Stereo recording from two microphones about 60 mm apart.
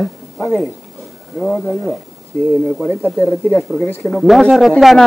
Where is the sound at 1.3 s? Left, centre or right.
Centre.